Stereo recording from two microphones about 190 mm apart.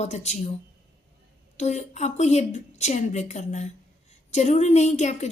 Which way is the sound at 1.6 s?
35° left (ahead or behind).